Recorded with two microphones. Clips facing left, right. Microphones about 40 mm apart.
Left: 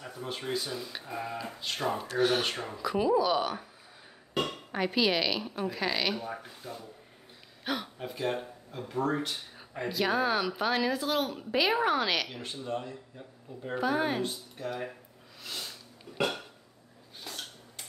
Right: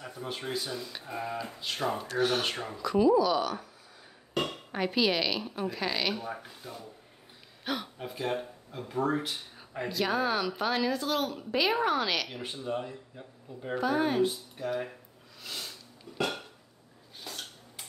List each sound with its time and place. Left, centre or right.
0.0 s speech: centre
3.0 s speech: centre
4.7 s speech: centre
12.3 s speech: centre
13.7 s speech: centre
15.4 s a sound: centre
17.2 s dishes: centre